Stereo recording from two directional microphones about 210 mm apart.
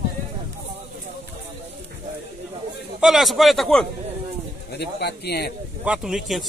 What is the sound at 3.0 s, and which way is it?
Speech, centre (ahead or behind).